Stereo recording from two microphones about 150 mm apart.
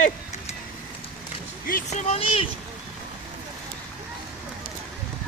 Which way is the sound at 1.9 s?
45° left (ahead or behind).